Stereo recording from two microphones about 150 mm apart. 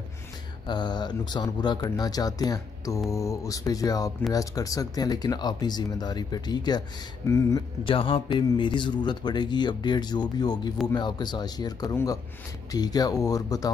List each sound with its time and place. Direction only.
0.7 s speech: 30° left (ahead or behind)
7.8 s speech: 35° left (ahead or behind)